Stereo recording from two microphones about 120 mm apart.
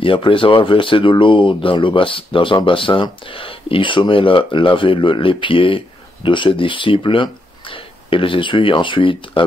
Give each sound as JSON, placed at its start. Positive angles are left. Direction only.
{"t": 0.0, "sound": "speech", "side_deg": 45}